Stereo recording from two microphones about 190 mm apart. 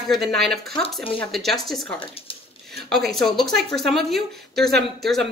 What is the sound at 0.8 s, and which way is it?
Speech, 30° left (ahead or behind).